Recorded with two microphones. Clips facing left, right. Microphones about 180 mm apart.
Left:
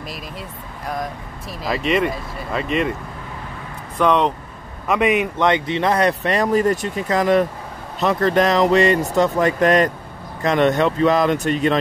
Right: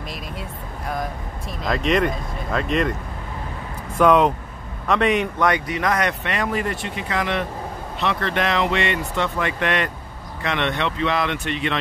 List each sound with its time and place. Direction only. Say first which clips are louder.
0.1 s speech: even; centre (ahead or behind)
4.0 s speech: right 1 dB; 5° right (ahead or behind)
4.8 s a man's voice: left 2 dB; 10° left (ahead or behind)
5.4 s speech: left 3 dB; 25° left (ahead or behind); by 11.8 s 40° left (ahead or behind)